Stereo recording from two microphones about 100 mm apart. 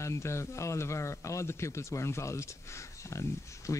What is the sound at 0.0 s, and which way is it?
Speech, 30° left (ahead or behind).